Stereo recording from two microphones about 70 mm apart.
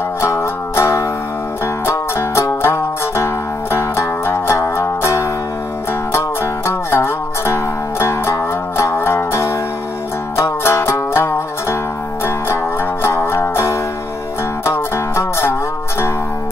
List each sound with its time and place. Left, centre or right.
0.2 s music: left
13.0 s music: left